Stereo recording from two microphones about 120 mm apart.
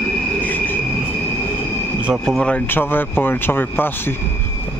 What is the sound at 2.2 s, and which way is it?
Speech, 5° left (ahead or behind).